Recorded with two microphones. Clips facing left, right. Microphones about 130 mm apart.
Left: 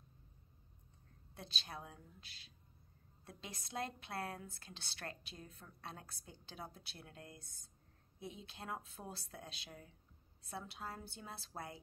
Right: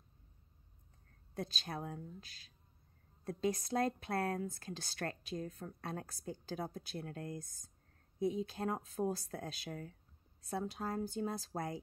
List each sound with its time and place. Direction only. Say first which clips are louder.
1.3 s a woman's voice: right 8 dB; 45° right (ahead or behind)